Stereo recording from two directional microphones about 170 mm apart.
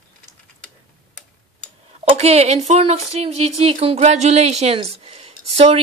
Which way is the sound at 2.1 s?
40° right (ahead or behind).